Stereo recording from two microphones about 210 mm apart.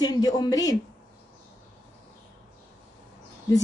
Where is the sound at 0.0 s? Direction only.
20° left (ahead or behind).